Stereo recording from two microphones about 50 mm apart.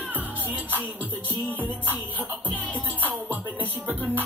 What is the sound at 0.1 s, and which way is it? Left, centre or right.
Music, right.